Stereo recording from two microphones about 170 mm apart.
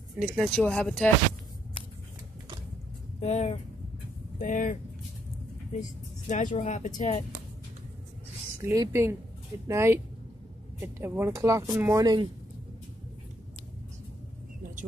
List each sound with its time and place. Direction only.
0.2 s speech: centre (ahead or behind)
3.2 s speech: 40° left (ahead or behind)
8.5 s speech: 20° right (ahead or behind)